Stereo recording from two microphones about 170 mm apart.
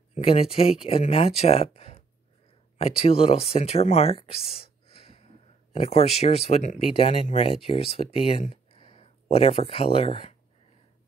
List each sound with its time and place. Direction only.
0.1 s speech: 35° left (ahead or behind)